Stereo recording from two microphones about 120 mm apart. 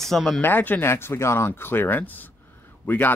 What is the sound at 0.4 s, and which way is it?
Speech, 15° left (ahead or behind).